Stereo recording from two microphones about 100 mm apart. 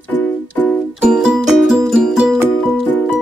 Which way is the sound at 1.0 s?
10° right (ahead or behind).